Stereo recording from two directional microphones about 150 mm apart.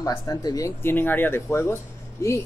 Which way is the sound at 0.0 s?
25° left (ahead or behind).